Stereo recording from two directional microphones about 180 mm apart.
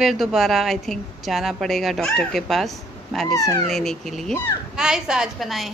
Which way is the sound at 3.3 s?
15° left (ahead or behind).